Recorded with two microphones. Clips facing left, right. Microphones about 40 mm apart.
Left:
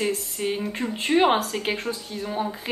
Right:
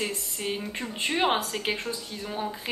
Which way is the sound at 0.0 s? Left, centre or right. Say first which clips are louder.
Left 5 dB; centre.